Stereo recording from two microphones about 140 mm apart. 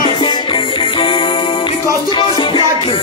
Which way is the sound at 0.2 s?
35° left (ahead or behind).